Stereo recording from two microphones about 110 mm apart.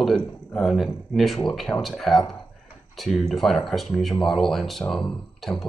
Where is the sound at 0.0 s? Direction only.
5° left (ahead or behind).